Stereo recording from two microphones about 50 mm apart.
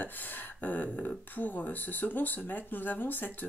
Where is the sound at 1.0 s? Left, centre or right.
Left.